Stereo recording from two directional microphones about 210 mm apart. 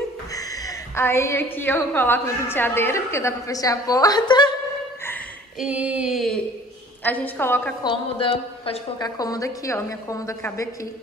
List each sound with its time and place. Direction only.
0.3 s a woman's voice: 15° left (ahead or behind)
5.6 s a sound: 5° right (ahead or behind)
7.0 s a woman's voice: 10° left (ahead or behind)
7.8 s a woman's voice: 25° left (ahead or behind)